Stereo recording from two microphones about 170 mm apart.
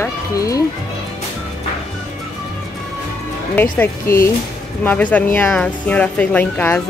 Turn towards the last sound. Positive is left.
turn(degrees=10)  # may be behind; listen again after turning